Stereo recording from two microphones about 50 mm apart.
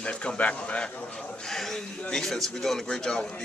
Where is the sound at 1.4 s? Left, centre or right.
Centre.